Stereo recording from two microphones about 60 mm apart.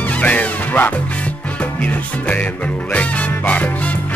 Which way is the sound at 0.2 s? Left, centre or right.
Left.